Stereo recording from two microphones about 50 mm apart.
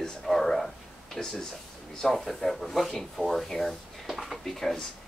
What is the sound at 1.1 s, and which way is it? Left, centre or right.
Speech, centre.